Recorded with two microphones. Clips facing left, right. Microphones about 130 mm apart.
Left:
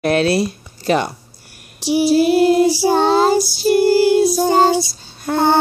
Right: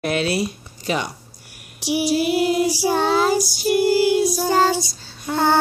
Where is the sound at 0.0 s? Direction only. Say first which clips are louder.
Left 6 dB; 40° left (ahead or behind).